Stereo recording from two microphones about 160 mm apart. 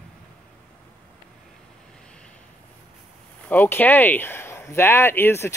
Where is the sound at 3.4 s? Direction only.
10° left (ahead or behind).